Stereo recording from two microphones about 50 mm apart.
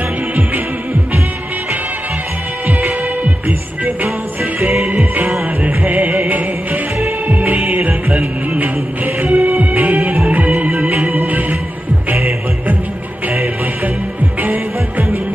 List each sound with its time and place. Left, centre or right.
3.4 s music: right
5.6 s music: right
14.4 s music: right